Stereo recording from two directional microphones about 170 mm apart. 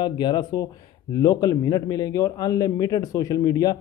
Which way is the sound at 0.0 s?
25° left (ahead or behind).